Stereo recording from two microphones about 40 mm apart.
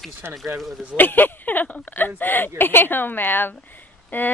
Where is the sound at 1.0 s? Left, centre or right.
Left.